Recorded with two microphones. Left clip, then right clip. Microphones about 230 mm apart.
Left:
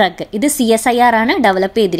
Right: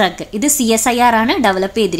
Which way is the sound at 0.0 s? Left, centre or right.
Centre.